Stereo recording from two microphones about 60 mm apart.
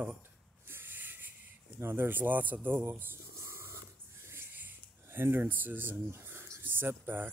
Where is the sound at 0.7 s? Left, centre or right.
Right.